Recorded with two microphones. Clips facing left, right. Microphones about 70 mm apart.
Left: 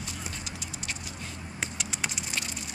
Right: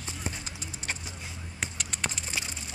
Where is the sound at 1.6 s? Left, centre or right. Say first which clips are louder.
Left 1 dB; centre.